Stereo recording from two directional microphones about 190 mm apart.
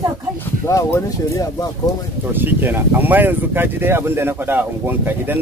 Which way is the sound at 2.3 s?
10° right (ahead or behind).